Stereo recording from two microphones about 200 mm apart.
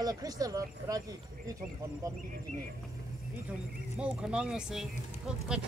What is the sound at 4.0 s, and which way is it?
Speech, 5° right (ahead or behind).